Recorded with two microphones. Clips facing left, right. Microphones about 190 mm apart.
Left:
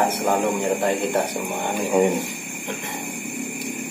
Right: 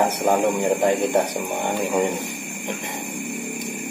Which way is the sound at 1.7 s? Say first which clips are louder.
Left 4 dB; 10° left (ahead or behind).